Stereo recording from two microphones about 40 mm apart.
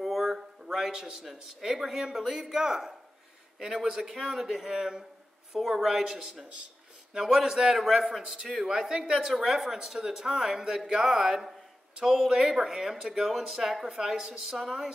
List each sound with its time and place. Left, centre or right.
0.0 s a sound: centre
0.7 s a man's voice: centre
8.2 s speech: centre
14.6 s a man's voice: centre